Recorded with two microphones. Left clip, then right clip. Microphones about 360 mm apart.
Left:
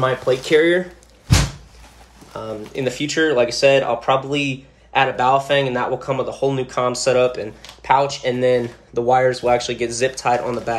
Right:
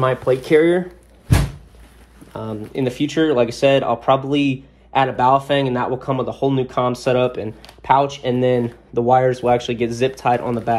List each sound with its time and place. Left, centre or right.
0.3 s speech: centre
2.3 s speech: centre